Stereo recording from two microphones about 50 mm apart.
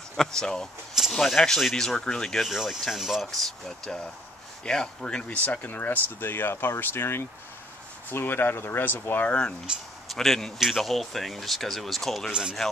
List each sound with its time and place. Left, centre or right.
0.2 s speech: centre
2.0 s speech: centre
2.5 s speech: centre
5.3 s speech: left
9.3 s speech: centre
10.0 s speech: centre
12.3 s speech: centre